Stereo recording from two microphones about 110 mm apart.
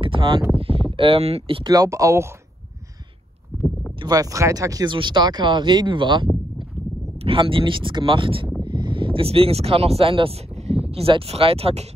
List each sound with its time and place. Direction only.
0.0 s a sound: 50° right (ahead or behind)
1.6 s speech: 35° right (ahead or behind)
4.0 s speech: 35° right (ahead or behind)
4.8 s speech: 45° right (ahead or behind)
10.6 s speech: 65° right (ahead or behind)